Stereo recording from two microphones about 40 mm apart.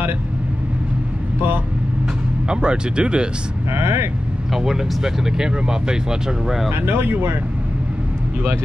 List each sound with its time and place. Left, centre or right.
2.4 s speech: right
3.7 s speech: right
4.5 s speech: centre
6.7 s speech: right